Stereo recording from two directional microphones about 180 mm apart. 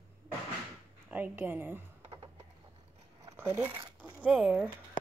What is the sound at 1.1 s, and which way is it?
Speech, 10° right (ahead or behind).